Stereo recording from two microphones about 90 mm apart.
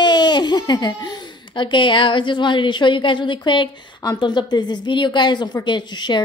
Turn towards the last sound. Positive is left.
turn(degrees=55)  # may be behind; listen again after turning